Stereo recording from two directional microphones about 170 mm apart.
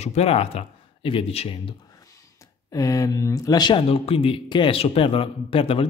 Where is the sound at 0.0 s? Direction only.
40° left (ahead or behind).